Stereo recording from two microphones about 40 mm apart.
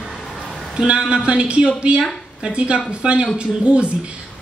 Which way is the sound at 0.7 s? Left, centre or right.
Right.